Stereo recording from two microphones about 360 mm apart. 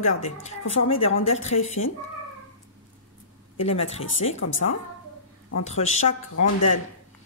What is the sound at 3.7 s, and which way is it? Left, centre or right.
Speech, centre.